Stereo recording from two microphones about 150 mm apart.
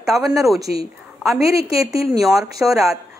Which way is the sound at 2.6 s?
5° right (ahead or behind).